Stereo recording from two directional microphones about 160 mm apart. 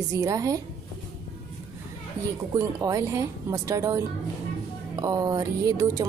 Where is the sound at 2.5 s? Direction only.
20° right (ahead or behind).